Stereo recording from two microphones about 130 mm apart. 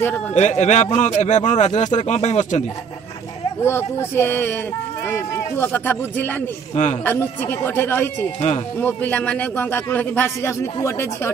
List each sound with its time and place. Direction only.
0.3 s speech: 60° left (ahead or behind)
3.6 s speech: 20° left (ahead or behind)
6.7 s speech: 60° left (ahead or behind)
7.1 s speech: 15° left (ahead or behind)